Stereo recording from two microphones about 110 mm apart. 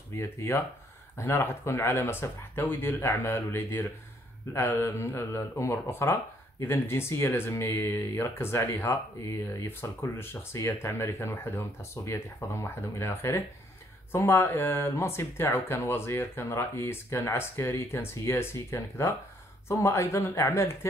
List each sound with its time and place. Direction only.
0.1 s speech: 25° left (ahead or behind)